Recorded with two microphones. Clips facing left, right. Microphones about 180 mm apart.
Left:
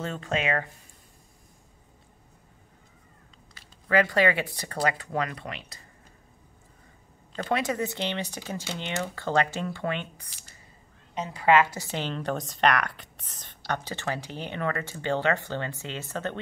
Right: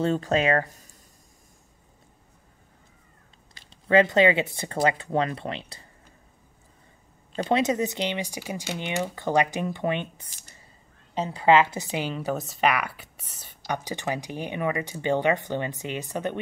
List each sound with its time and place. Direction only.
0.0 s speech: 35° right (ahead or behind)
3.9 s speech: 20° right (ahead or behind)
7.3 s a woman's voice: 20° right (ahead or behind)